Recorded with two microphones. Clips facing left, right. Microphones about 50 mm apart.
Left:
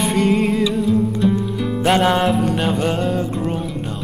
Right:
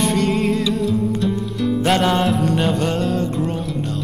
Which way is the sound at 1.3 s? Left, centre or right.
Centre.